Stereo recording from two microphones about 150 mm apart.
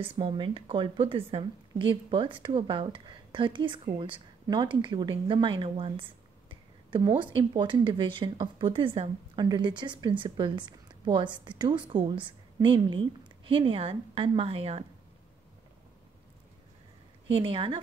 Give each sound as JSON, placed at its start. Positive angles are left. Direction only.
{"t": 0.0, "sound": "a woman's voice", "side_deg": -35}
{"t": 7.2, "sound": "a woman's voice", "side_deg": -35}
{"t": 17.4, "sound": "a woman's voice", "side_deg": -35}